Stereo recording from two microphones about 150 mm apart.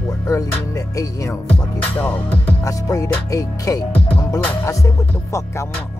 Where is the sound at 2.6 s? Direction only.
20° left (ahead or behind).